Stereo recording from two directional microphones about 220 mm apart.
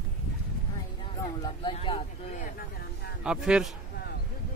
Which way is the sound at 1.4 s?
25° left (ahead or behind).